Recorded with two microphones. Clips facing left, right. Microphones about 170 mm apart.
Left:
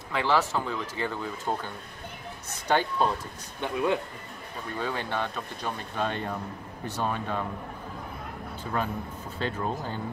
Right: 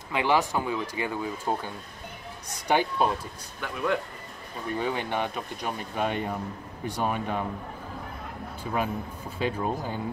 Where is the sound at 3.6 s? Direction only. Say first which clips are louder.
Left 2 dB; 20° left (ahead or behind).